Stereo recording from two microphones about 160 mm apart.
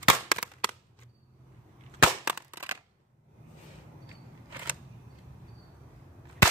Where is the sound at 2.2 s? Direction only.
10° right (ahead or behind).